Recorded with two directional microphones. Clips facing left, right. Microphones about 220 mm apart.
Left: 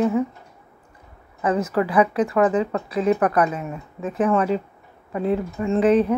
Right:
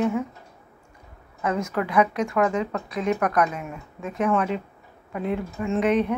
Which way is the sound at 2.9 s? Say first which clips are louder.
Left 4 dB; 30° left (ahead or behind).